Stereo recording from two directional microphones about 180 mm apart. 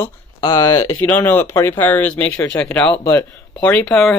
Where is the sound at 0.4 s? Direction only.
20° left (ahead or behind).